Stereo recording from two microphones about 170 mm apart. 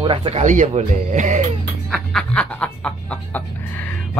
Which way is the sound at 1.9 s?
5° left (ahead or behind).